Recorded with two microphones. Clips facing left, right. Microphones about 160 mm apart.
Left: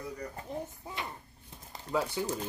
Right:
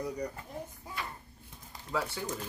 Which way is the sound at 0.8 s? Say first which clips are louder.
Left 1 dB; 25° left (ahead or behind).